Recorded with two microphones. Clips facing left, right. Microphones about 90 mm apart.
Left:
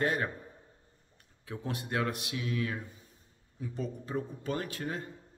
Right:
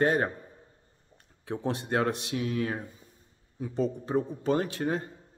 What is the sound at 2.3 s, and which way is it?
Speech, 40° right (ahead or behind).